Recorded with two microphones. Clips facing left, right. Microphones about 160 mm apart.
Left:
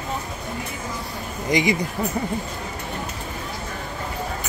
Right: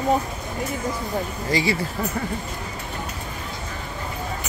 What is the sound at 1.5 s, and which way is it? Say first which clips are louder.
Speech: left 3 dB; 15° left (ahead or behind).